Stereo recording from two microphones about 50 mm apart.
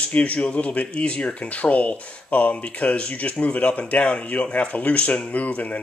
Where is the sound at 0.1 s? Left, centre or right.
Left.